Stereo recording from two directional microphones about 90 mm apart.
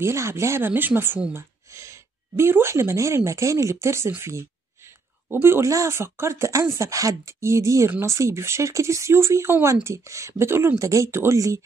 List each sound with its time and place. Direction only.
0.0 s speech: 30° right (ahead or behind)